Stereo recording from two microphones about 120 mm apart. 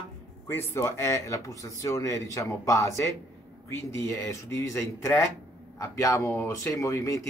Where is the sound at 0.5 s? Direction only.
20° left (ahead or behind).